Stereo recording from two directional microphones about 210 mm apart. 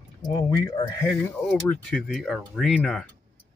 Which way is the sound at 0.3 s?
15° left (ahead or behind).